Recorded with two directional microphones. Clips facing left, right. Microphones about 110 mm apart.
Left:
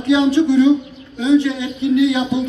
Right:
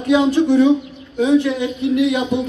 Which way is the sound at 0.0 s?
45° right (ahead or behind).